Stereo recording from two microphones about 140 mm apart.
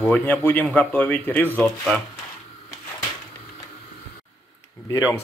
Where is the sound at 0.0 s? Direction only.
15° left (ahead or behind).